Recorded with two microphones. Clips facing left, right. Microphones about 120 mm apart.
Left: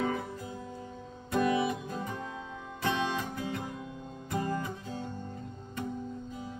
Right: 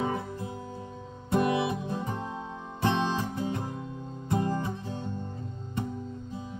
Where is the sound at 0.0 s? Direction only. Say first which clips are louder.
Right 1 dB; 25° right (ahead or behind).